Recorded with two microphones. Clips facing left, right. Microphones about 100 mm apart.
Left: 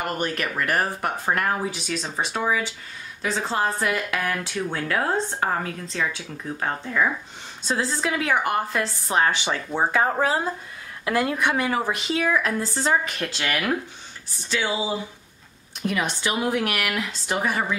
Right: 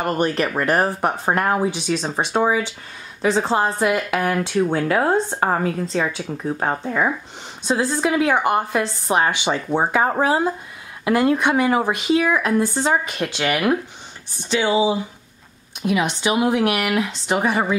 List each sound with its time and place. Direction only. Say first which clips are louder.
0.0 s a woman's voice: right 6 dB; 30° right (ahead or behind)
3.8 s a woman's voice: right 6 dB; 20° right (ahead or behind)
7.6 s a woman's voice: right 5 dB; 20° right (ahead or behind)